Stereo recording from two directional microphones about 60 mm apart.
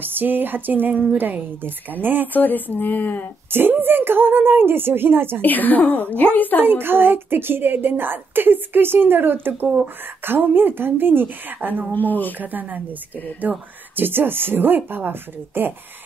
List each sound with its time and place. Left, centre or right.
0.0 s a woman's voice: right
2.3 s speech: left
3.5 s a woman's voice: right
5.4 s a woman's voice: left
6.6 s a woman's voice: right
11.9 s a woman's voice: left
12.4 s a woman's voice: right